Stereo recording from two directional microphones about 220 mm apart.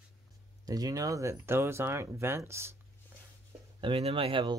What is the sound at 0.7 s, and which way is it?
Speech, 15° right (ahead or behind).